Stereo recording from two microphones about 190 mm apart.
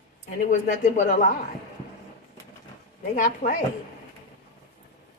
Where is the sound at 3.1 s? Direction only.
40° left (ahead or behind).